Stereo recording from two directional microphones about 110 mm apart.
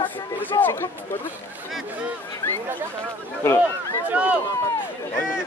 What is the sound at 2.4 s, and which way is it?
Speech, 15° left (ahead or behind).